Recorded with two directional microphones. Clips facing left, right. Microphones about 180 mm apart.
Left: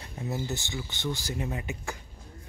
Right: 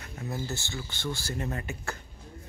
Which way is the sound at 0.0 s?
20° left (ahead or behind).